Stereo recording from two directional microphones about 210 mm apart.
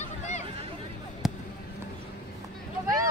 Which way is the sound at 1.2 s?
Centre (ahead or behind).